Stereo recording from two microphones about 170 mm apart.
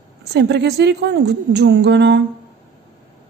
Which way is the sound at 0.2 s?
75° right (ahead or behind).